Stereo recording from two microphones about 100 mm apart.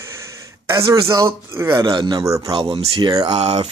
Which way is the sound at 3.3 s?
90° right.